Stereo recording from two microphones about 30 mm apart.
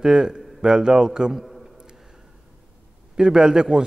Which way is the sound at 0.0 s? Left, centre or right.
Right.